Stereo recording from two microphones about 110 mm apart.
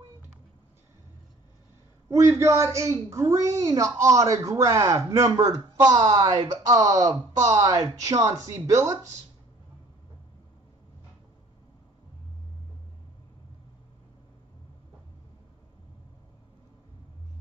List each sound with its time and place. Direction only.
2.0 s a woman's voice: 25° right (ahead or behind)